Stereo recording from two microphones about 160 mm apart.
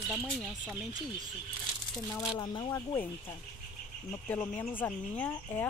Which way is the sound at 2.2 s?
30° left (ahead or behind).